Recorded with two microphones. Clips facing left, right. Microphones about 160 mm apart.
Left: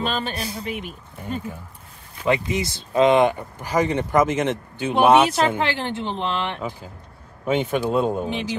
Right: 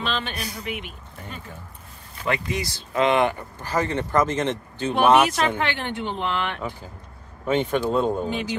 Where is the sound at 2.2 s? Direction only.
20° left (ahead or behind).